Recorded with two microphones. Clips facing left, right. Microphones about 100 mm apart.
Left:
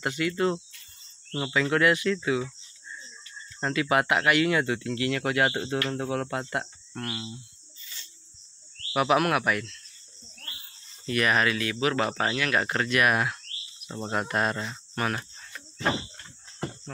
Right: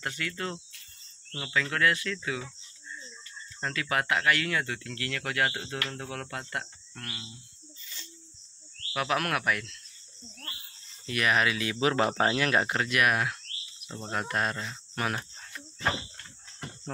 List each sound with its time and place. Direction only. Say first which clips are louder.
0.0 s speech: left 9 dB; 15° left (ahead or behind)
3.6 s speech: left 6 dB; 20° left (ahead or behind)
8.9 s speech: left 6 dB; 15° left (ahead or behind)
11.1 s speech: left 2 dB; centre (ahead or behind)
11.6 s speech: even; 25° right (ahead or behind)
12.6 s speech: left 2 dB; 10° right (ahead or behind); by 14.8 s 10° left (ahead or behind)
15.0 s speech: left 2 dB; 5° right (ahead or behind)